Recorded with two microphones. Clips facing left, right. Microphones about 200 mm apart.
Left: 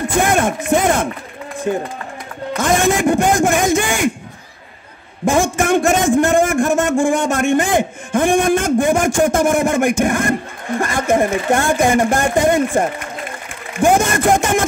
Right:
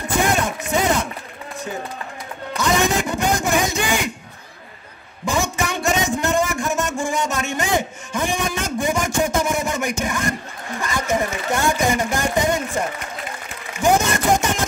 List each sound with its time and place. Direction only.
0.2 s a man's voice: 50° left (ahead or behind)
5.2 s a man's voice: 50° left (ahead or behind)